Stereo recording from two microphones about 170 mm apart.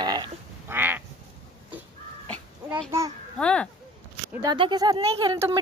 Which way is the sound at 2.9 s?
20° right (ahead or behind).